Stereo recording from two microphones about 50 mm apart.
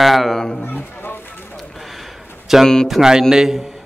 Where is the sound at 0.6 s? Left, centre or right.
Left.